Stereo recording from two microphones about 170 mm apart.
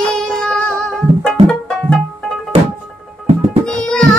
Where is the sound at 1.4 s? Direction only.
35° right (ahead or behind).